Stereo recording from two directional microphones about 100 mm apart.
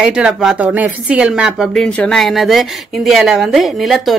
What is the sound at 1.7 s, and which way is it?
A woman's voice, 5° left (ahead or behind).